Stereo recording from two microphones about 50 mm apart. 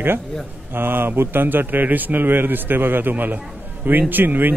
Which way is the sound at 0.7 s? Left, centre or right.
Right.